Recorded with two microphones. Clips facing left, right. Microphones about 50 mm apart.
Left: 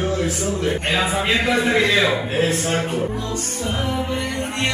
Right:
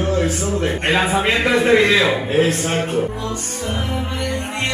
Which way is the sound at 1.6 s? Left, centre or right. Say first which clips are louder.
Right 6 dB; right.